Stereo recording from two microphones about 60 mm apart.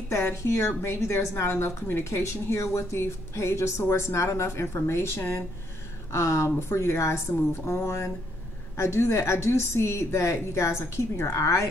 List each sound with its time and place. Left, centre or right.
0.1 s a woman's voice: left
2.0 s a woman's voice: left